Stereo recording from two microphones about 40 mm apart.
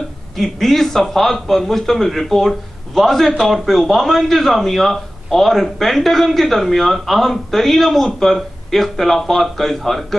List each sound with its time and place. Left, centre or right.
0.4 s a man's voice: centre